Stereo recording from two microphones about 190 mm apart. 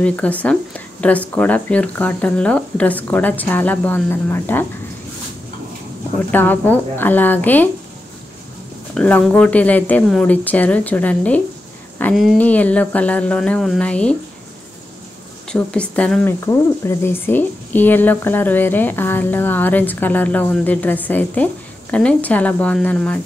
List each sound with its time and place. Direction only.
0.0 s speech: 10° left (ahead or behind)
6.3 s speech: 10° left (ahead or behind)
8.9 s speech: 5° left (ahead or behind)
15.5 s speech: 5° left (ahead or behind)